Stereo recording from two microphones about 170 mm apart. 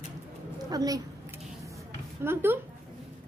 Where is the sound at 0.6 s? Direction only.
20° right (ahead or behind).